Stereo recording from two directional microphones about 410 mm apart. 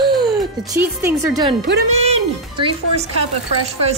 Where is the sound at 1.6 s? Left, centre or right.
Centre.